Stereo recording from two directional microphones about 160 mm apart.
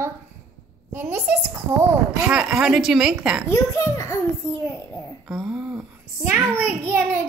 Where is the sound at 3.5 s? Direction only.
15° left (ahead or behind).